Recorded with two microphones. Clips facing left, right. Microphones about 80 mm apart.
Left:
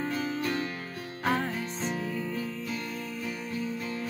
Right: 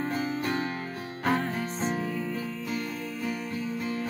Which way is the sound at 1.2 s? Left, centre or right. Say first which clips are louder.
Right 1 dB; centre.